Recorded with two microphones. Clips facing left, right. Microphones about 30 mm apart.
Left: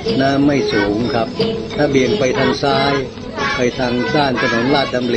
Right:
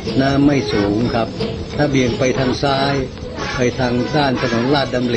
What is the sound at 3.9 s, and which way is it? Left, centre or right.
Speech, left.